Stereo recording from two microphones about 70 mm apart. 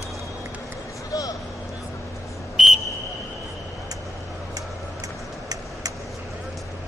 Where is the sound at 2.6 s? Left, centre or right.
Centre.